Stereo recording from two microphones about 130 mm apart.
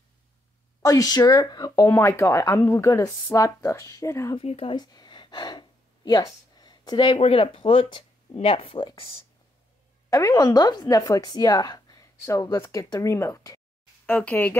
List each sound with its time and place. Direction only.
0.8 s speech: 30° left (ahead or behind)
4.4 s speech: 50° left (ahead or behind)
4.7 s a sound: 30° left (ahead or behind)
7.2 s speech: 45° left (ahead or behind)
10.0 s speech: 25° left (ahead or behind)
14.0 s speech: 10° left (ahead or behind)